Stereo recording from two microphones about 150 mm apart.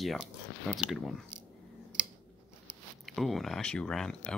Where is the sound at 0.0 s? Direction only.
Centre (ahead or behind).